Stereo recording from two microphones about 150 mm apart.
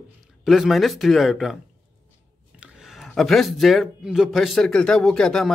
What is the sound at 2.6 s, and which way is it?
A man's voice, 5° right (ahead or behind).